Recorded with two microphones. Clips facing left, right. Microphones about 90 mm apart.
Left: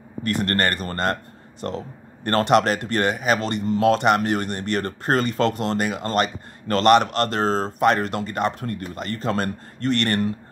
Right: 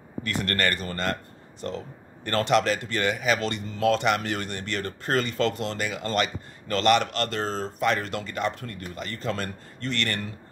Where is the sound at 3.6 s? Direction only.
55° left (ahead or behind).